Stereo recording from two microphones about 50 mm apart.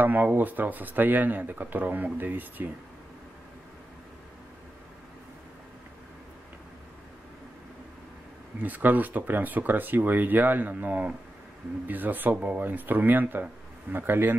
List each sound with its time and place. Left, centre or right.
0.0 s speech: right
8.6 s speech: right